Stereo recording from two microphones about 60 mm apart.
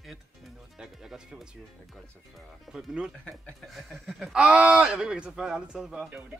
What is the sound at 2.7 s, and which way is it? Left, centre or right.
Speech, centre.